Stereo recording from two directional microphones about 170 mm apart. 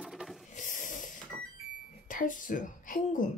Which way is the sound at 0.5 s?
50° left (ahead or behind).